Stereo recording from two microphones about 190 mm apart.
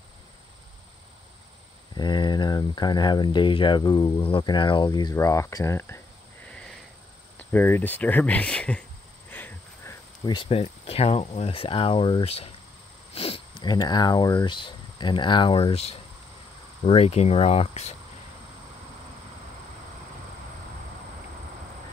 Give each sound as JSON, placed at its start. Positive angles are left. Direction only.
{"t": 2.0, "sound": "speech", "side_deg": 25}
{"t": 9.3, "sound": "a sound", "side_deg": 10}
{"t": 10.2, "sound": "speech", "side_deg": 25}